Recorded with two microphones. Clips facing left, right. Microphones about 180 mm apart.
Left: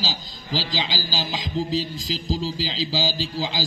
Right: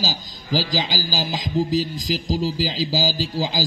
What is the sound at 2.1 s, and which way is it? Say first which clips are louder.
Speech: right 3 dB; 15° right (ahead or behind).